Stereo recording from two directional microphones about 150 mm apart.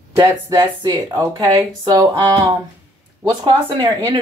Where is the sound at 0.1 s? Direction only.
25° right (ahead or behind).